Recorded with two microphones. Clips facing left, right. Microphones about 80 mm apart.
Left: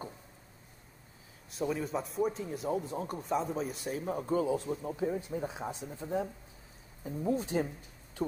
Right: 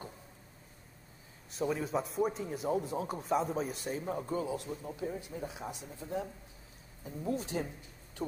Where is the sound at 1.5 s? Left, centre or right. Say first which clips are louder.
Even; centre.